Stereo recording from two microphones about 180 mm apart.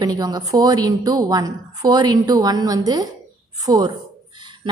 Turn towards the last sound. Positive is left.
turn(degrees=-20)  # may be behind; listen again after turning